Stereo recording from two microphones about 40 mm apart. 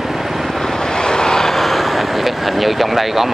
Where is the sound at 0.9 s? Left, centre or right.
Centre.